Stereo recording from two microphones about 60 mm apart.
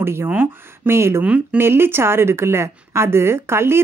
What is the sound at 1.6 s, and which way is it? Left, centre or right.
Speech, right.